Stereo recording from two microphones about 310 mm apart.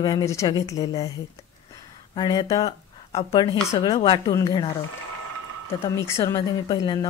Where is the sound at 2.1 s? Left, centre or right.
Centre.